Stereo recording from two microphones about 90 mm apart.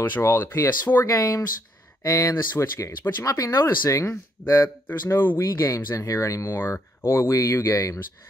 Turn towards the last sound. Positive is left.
turn(degrees=35)  # may be behind; listen again after turning